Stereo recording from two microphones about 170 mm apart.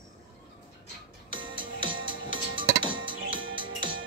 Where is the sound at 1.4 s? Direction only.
30° right (ahead or behind).